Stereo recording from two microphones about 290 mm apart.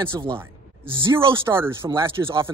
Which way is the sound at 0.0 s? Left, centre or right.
Centre.